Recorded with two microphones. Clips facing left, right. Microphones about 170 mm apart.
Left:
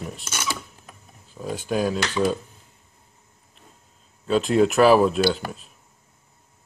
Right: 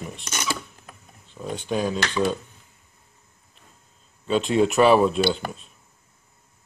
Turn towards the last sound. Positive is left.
turn(degrees=0)  # may be behind; listen again after turning